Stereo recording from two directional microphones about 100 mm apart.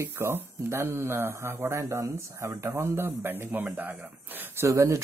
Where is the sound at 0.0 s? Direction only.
25° right (ahead or behind).